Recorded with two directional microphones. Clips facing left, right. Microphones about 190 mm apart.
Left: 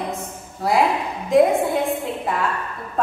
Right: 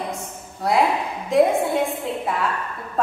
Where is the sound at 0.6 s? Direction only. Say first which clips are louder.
Left 1 dB; centre (ahead or behind).